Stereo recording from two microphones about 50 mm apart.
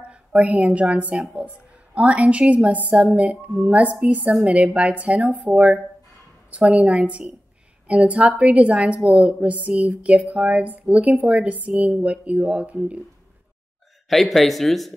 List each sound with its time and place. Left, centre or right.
0.0 s a woman's voice: right
5.5 s a woman's voice: centre
14.0 s speech: centre